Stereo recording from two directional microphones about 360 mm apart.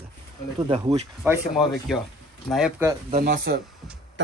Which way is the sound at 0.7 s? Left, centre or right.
Centre.